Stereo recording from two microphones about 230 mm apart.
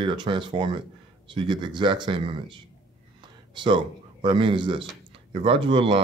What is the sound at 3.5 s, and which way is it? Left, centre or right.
A man's voice, centre.